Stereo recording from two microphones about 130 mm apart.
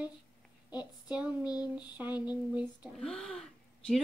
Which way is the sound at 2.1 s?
35° left (ahead or behind).